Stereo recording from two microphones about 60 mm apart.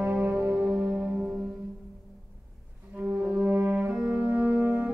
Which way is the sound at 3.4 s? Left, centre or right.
Centre.